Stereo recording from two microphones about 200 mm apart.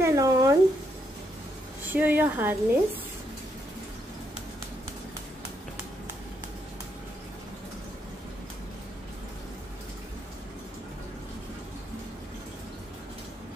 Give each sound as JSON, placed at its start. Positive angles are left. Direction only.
{"t": 0.0, "sound": "speech", "side_deg": -15}
{"t": 1.9, "sound": "a woman's voice", "side_deg": -10}